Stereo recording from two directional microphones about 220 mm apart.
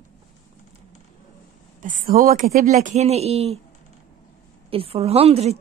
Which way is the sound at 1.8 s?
35° right (ahead or behind).